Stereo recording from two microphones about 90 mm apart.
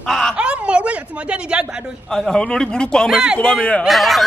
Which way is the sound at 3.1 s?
5° right (ahead or behind).